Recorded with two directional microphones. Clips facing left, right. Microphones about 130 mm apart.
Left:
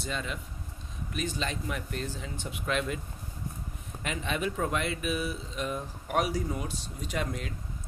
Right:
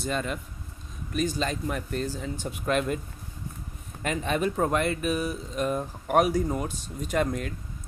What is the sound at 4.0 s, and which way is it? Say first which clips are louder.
Speech: right 5 dB; 45° right (ahead or behind).